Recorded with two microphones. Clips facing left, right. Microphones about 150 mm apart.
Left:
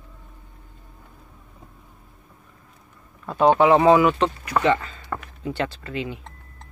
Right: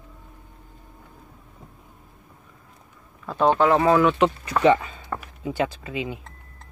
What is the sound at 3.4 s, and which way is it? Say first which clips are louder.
Speech: left 3 dB; 15° left (ahead or behind).